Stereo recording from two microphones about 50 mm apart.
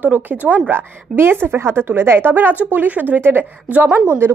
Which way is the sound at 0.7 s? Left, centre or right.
Right.